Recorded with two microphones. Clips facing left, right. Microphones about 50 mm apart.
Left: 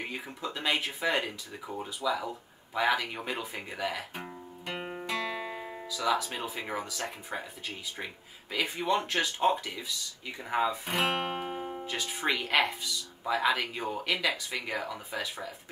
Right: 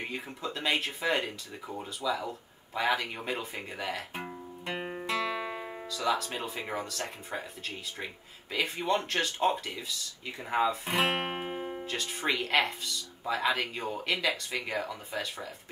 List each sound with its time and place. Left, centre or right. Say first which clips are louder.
0.1 s speech: even; centre
4.1 s music: right 2 dB; centre
5.9 s speech: left 1 dB; centre
11.1 s music: left 1 dB; centre
11.8 s speech: left 2 dB; centre